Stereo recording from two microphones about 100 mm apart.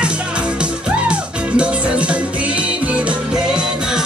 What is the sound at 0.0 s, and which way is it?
Music, 10° right (ahead or behind).